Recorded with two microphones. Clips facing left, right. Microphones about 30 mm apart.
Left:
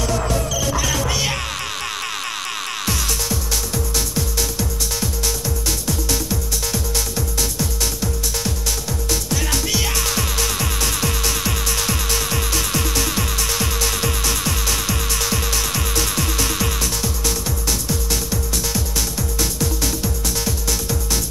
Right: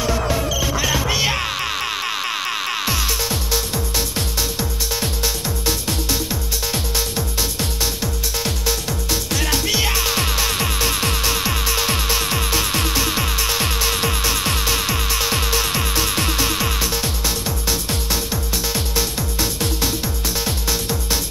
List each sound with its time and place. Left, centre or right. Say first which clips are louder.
0.0 s music: right 1 dB; centre
6.0 s music: even; centre
9.5 s music: right 3 dB; centre
13.6 s music: right 1 dB; right
13.8 s music: right 2 dB; centre
18.3 s music: even; right